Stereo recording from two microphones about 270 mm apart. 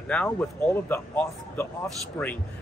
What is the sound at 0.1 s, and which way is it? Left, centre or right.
Speech, centre.